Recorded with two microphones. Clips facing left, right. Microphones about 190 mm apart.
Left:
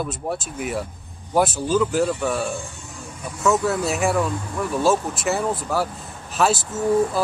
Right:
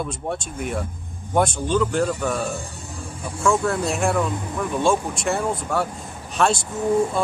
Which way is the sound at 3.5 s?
5° left (ahead or behind).